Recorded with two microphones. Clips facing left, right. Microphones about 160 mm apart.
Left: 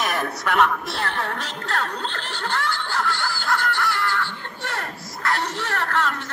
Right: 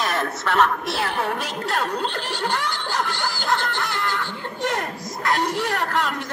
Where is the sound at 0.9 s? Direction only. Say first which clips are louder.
Right 3 dB; 10° right (ahead or behind).